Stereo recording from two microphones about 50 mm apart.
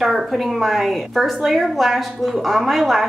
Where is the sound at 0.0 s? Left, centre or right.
Centre.